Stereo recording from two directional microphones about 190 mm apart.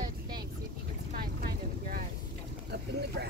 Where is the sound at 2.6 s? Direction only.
60° right (ahead or behind).